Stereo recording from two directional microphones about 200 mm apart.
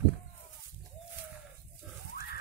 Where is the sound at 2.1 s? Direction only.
50° left (ahead or behind).